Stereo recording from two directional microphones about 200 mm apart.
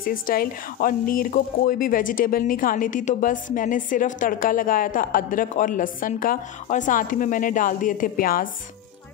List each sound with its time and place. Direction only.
0.0 s speech: 45° left (ahead or behind)